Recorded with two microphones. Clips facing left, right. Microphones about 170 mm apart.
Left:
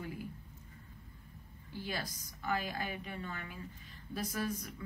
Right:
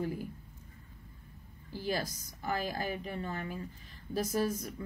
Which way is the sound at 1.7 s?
40° right (ahead or behind).